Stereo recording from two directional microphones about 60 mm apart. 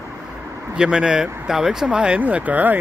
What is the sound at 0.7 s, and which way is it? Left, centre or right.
Speech, centre.